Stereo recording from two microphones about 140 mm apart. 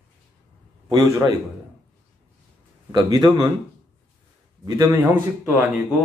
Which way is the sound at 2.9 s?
25° right (ahead or behind).